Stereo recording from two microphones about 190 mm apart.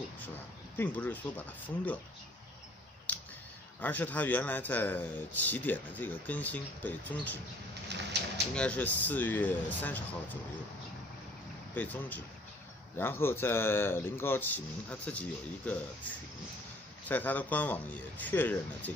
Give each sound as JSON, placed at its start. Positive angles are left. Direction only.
{"t": 0.7, "sound": "a man's voice", "side_deg": 10}
{"t": 3.8, "sound": "a man's voice", "side_deg": 10}
{"t": 7.9, "sound": "speech", "side_deg": -65}
{"t": 8.5, "sound": "a man's voice", "side_deg": 5}
{"t": 11.7, "sound": "a man's voice", "side_deg": 10}